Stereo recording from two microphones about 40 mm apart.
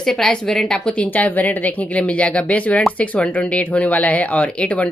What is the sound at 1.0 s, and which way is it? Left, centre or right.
A woman's voice, left.